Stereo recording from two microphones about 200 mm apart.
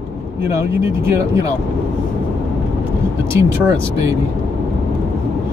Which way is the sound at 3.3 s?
15° right (ahead or behind).